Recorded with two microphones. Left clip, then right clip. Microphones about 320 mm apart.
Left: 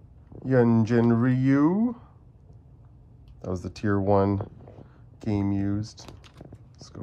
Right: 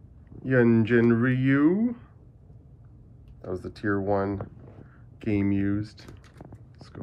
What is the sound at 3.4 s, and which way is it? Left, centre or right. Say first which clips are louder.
Speech: left 1 dB; left.